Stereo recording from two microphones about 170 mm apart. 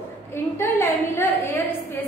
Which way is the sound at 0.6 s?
15° left (ahead or behind).